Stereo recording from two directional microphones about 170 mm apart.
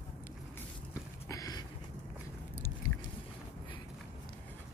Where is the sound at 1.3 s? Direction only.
20° left (ahead or behind).